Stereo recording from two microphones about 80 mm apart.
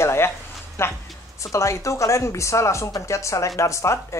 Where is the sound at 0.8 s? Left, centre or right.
Left.